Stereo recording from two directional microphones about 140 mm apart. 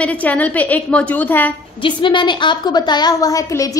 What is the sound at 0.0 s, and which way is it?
A woman's voice, 10° left (ahead or behind).